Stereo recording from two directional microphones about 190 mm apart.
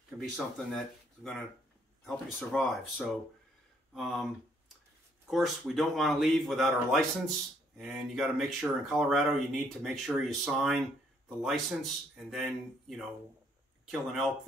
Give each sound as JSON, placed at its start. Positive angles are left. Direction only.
{"t": 0.2, "sound": "speech", "side_deg": 0}
{"t": 5.3, "sound": "speech", "side_deg": 0}